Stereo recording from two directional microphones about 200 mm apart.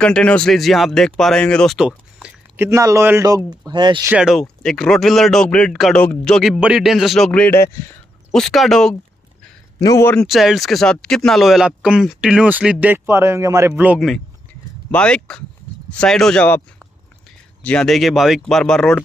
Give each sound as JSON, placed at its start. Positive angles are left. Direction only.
{"t": 0.0, "sound": "speech", "side_deg": 5}
{"t": 4.1, "sound": "speech", "side_deg": -5}
{"t": 9.8, "sound": "a man's voice", "side_deg": 15}
{"t": 10.2, "sound": "speech", "side_deg": 0}
{"t": 17.6, "sound": "speech", "side_deg": 0}